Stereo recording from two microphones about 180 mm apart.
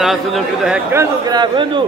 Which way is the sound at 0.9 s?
20° right (ahead or behind).